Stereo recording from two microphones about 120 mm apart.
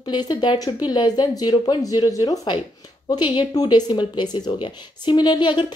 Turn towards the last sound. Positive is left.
turn(degrees=40)  # may be behind; listen again after turning